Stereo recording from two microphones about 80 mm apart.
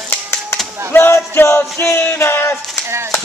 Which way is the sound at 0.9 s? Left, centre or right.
Left.